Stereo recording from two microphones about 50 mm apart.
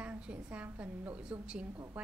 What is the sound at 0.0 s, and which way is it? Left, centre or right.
A woman's voice, right.